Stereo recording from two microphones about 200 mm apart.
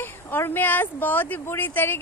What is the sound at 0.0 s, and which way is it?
Speech, 10° left (ahead or behind).